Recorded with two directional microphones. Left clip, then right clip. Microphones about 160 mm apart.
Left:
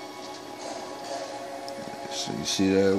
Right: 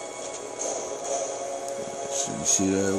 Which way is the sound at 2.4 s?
10° left (ahead or behind).